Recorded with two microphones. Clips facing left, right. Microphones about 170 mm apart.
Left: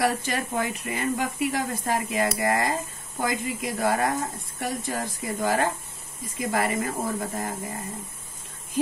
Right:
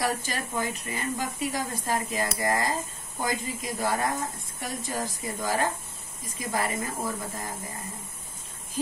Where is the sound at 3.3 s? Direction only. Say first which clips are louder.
Left 3 dB; 60° left (ahead or behind).